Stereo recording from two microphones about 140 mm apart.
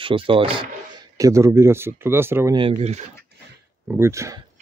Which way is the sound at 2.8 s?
55° right (ahead or behind).